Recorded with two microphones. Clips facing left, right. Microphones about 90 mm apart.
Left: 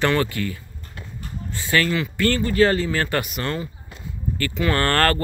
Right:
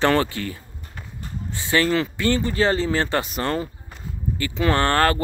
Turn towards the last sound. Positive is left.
turn(degrees=-15)  # may be behind; listen again after turning